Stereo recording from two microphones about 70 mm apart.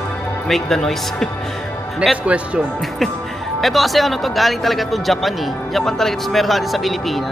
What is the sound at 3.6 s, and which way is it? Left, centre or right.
Speech, centre.